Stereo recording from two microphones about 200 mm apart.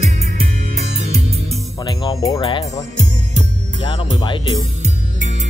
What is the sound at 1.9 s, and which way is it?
Speech, 20° left (ahead or behind).